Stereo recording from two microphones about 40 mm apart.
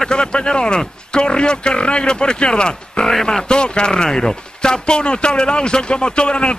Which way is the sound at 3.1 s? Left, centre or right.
Centre.